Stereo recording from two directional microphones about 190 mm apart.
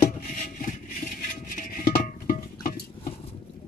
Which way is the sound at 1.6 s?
50° left (ahead or behind).